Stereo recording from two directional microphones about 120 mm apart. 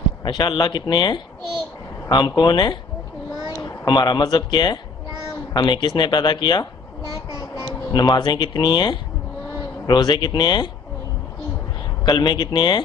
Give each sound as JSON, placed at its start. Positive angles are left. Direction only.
{"t": 0.2, "sound": "speech", "side_deg": 35}
{"t": 12.0, "sound": "speech", "side_deg": 35}